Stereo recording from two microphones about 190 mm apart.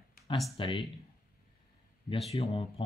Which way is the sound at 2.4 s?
30° left (ahead or behind).